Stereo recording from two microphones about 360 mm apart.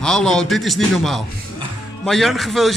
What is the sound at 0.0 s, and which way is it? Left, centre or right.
A man's voice, centre.